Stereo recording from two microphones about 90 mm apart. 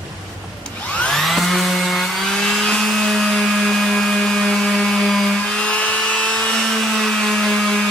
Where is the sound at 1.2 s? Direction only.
Centre (ahead or behind).